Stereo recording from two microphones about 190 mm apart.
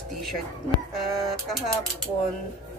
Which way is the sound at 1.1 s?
Centre (ahead or behind).